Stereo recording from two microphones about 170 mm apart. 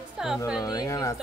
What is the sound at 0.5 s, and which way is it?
Speech, 25° left (ahead or behind).